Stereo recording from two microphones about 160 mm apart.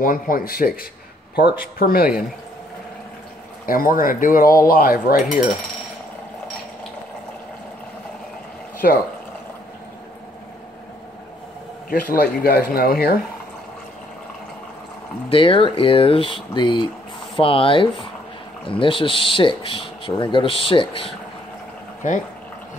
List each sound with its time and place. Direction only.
0.0 s speech: 60° left (ahead or behind)
1.8 s speech: 65° left (ahead or behind)
3.6 s speech: 60° left (ahead or behind)
8.8 s speech: 65° left (ahead or behind)
11.9 s speech: 70° left (ahead or behind)
15.2 s speech: 35° left (ahead or behind)
22.0 s speech: 55° left (ahead or behind)